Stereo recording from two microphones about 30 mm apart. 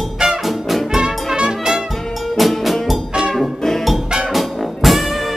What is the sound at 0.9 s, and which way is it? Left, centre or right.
Brass instrument, right.